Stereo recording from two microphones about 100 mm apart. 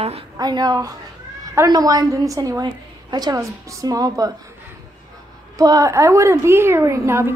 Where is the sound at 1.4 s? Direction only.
25° right (ahead or behind).